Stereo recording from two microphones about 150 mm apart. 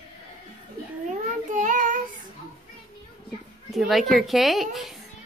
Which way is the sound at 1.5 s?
60° right (ahead or behind).